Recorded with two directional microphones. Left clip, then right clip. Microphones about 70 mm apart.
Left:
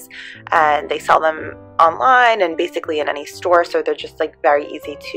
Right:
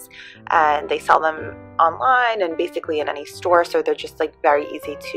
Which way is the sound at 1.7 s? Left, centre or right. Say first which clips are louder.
Left 4 dB; left.